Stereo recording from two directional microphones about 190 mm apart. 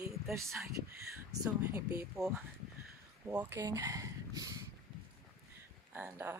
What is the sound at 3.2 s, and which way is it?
Speech, 10° right (ahead or behind).